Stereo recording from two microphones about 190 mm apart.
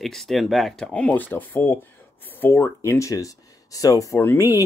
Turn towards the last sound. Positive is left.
turn(degrees=15)  # may be behind; listen again after turning